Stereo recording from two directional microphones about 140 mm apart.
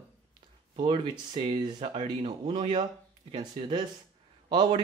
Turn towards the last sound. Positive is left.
turn(degrees=-30)  # may be behind; listen again after turning